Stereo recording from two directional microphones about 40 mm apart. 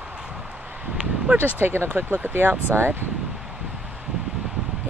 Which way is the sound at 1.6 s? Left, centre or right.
Right.